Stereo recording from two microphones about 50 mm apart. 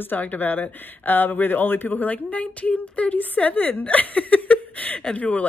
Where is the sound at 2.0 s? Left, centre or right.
Left.